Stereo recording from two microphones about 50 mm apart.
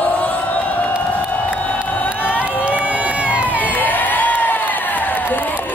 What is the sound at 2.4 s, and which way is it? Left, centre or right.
Crowd, right.